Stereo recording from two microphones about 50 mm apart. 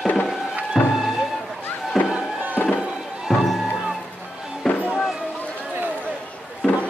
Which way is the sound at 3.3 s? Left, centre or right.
Centre.